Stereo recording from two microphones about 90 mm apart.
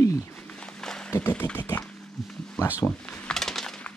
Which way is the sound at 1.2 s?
20° left (ahead or behind).